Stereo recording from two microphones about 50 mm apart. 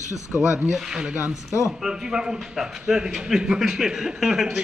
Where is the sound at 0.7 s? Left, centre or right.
Centre.